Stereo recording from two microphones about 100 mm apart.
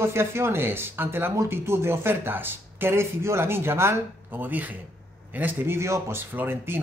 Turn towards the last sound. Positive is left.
turn(degrees=-20)  # may be behind; listen again after turning